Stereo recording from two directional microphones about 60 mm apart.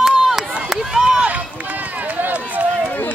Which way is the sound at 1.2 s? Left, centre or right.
Right.